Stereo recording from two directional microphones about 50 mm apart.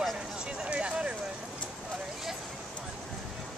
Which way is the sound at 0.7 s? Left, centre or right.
Right.